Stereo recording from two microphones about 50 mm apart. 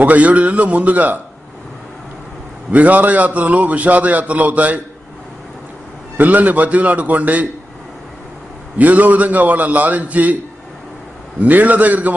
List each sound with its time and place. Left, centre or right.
0.0 s a man's voice: right
2.7 s a man's voice: right
6.1 s a man's voice: right
8.7 s a man's voice: right
11.4 s a man's voice: right